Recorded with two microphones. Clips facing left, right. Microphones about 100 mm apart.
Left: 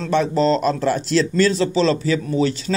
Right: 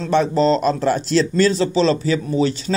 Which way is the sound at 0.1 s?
30° right (ahead or behind).